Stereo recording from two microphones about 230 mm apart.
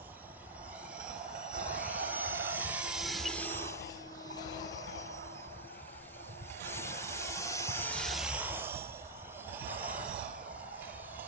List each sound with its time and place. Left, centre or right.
1.6 s vehicle: centre
6.6 s vehicle: centre